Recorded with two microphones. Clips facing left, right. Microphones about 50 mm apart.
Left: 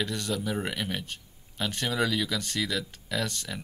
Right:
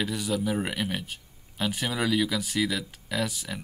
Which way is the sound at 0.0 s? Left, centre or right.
Centre.